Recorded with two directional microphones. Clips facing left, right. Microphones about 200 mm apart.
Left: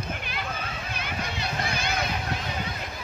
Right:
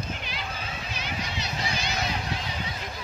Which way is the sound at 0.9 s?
55° left (ahead or behind).